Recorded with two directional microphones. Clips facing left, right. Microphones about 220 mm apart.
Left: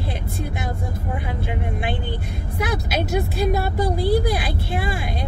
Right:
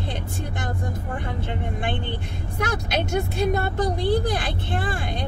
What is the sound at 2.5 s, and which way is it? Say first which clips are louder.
Speech: left 1 dB; 5° left (ahead or behind).